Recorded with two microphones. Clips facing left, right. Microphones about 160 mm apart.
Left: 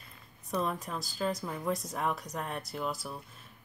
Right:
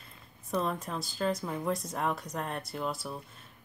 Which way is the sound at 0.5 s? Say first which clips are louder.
Right 1 dB; centre (ahead or behind).